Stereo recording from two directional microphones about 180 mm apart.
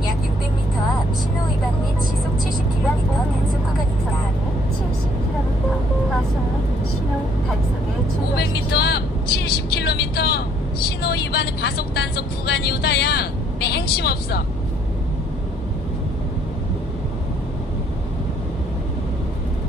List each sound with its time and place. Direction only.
8.4 s vehicle: 65° left (ahead or behind)